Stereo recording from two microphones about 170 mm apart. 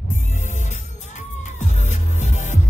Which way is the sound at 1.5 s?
45° left (ahead or behind).